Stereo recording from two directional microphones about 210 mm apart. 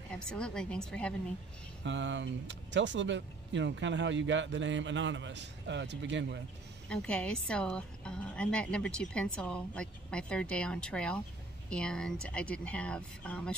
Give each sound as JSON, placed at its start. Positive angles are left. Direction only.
{"t": 0.1, "sound": "a woman's voice", "side_deg": 5}
{"t": 1.9, "sound": "speech", "side_deg": -60}
{"t": 6.9, "sound": "a woman's voice", "side_deg": 5}